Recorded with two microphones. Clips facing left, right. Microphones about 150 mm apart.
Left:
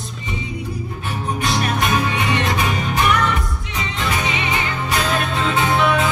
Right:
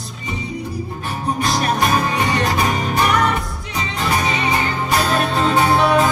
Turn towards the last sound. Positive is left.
turn(degrees=-35)  # may be behind; listen again after turning